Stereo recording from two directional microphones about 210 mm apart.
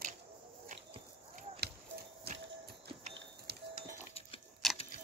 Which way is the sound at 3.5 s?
50° right (ahead or behind).